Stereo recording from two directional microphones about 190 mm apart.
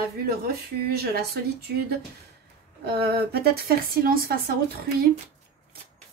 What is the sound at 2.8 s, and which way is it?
Speech, 55° right (ahead or behind).